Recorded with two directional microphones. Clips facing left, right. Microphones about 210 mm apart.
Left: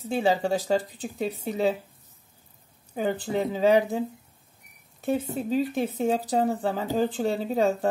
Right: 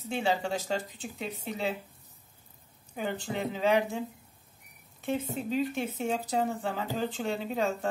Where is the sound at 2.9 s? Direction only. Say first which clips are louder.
Left 7 dB; 40° left (ahead or behind).